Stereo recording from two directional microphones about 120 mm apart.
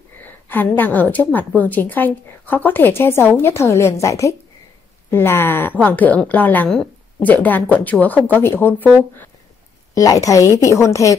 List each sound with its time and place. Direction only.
0.2 s a woman's voice: 15° left (ahead or behind)
9.9 s a woman's voice: 30° left (ahead or behind)